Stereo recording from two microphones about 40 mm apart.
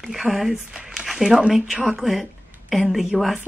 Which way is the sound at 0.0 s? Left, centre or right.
Centre.